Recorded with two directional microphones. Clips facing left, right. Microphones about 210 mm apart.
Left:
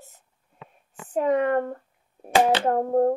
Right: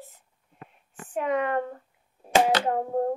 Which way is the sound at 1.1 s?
40° left (ahead or behind).